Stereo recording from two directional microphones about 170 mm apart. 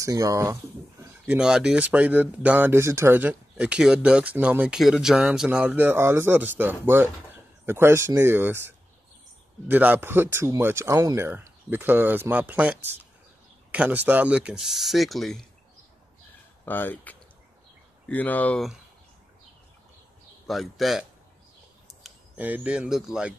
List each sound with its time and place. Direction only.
0.0 s speech: 20° right (ahead or behind)
1.2 s speech: 5° right (ahead or behind)
16.6 s speech: 10° left (ahead or behind)
20.4 s speech: centre (ahead or behind)